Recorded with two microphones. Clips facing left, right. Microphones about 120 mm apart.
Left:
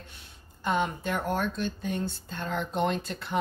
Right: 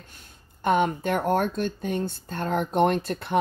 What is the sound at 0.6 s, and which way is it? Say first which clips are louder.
Speech: right 6 dB; 55° right (ahead or behind).